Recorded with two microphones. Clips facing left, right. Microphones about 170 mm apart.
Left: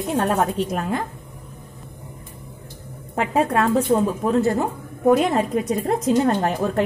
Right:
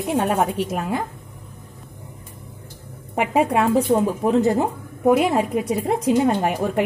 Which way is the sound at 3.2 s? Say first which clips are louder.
Right 1 dB; 15° right (ahead or behind).